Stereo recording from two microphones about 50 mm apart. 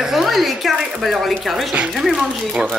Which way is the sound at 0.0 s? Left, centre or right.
Centre.